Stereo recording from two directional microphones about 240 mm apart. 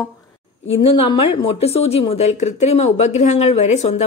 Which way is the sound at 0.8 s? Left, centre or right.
Left.